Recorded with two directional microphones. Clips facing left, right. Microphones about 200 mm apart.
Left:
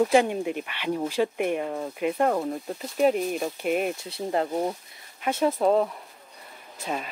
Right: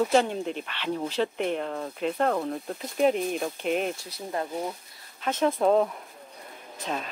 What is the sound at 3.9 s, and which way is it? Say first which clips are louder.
Speech: left 6 dB; 25° left (ahead or behind).